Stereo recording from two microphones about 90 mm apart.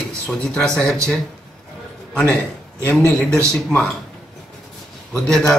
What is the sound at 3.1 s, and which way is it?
Speech, 15° left (ahead or behind).